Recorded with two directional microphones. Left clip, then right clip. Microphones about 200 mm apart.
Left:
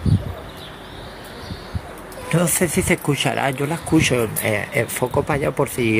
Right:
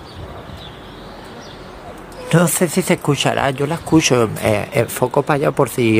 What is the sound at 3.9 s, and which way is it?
Speech, 25° right (ahead or behind).